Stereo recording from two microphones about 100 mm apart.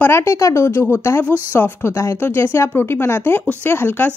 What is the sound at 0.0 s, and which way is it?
Speech, 25° left (ahead or behind).